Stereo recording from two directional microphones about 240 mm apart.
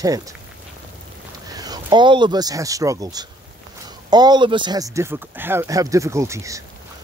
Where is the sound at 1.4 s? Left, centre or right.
Centre.